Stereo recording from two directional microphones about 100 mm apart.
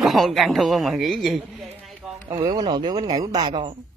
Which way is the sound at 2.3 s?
45° right (ahead or behind).